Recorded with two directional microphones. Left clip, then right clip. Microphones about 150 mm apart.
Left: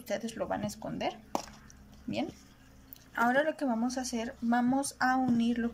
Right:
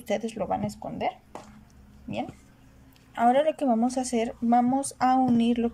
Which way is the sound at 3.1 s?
15° right (ahead or behind).